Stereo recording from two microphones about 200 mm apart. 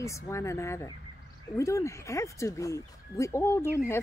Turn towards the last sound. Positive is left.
turn(degrees=10)  # may be behind; listen again after turning